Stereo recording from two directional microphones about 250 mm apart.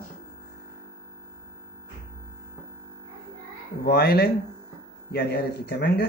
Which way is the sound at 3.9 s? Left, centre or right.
Left.